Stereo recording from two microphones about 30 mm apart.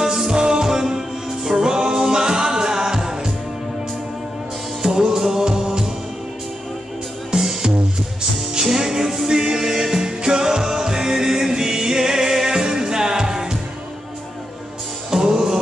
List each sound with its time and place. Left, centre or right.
0.0 s music: centre
0.3 s music: right
4.8 s music: centre
7.3 s music: centre
15.0 s music: right